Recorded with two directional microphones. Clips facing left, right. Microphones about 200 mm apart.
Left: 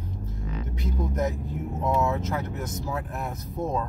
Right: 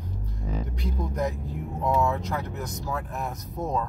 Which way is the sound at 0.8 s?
Centre (ahead or behind).